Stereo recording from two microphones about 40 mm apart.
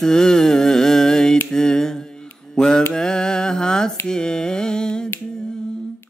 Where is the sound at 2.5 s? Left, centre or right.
Centre.